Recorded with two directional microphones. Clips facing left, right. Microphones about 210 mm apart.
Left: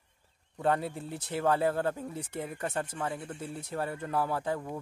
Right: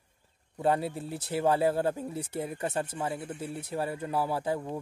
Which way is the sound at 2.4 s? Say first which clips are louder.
Right 1 dB; 25° right (ahead or behind).